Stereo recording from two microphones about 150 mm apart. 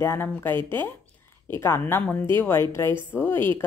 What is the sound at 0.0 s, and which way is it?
Speech, 15° left (ahead or behind).